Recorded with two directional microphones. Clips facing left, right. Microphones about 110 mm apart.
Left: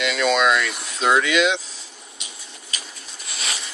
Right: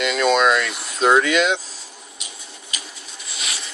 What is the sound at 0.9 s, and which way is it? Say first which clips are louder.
Speech: right 3 dB; 45° right (ahead or behind).